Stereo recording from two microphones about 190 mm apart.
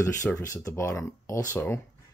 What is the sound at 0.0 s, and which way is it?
Speech, 15° left (ahead or behind).